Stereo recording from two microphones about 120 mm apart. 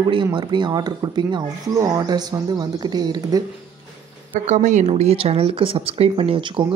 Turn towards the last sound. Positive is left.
turn(degrees=-45)  # may be behind; listen again after turning